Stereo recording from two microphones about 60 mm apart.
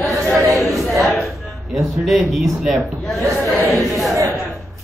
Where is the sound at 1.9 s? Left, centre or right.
Centre.